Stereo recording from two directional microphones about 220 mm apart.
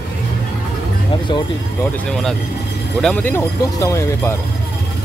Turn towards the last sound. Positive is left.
turn(degrees=10)  # may be behind; listen again after turning